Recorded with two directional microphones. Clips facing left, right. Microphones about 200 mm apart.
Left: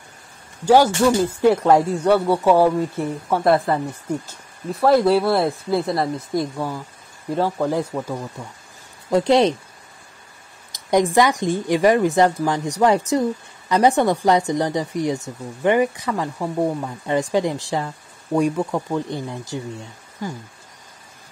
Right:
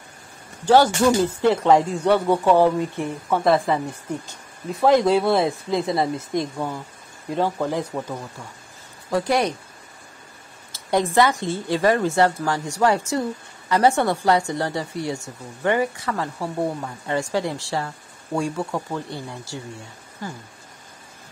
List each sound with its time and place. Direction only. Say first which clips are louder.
0.7 s speech: left 1 dB; 10° left (ahead or behind)
9.1 s speech: left 5 dB; 20° left (ahead or behind)
10.7 s speech: left 4 dB; 15° left (ahead or behind)